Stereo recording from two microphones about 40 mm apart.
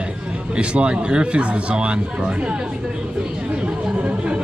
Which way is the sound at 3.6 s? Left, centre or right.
Right.